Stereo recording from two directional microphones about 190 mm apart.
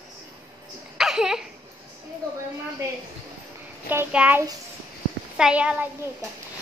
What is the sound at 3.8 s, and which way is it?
Child singing, 10° right (ahead or behind).